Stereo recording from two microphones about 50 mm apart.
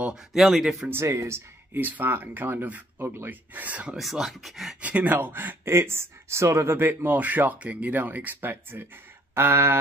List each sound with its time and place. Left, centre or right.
0.1 s speech: centre
1.0 s speech: right
1.7 s speech: right
4.0 s speech: centre
4.8 s speech: right
5.7 s speech: right
6.8 s speech: right
7.2 s speech: right
9.3 s a sound: right